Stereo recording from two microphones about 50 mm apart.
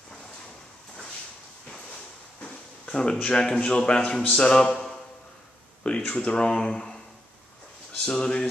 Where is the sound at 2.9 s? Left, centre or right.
Centre.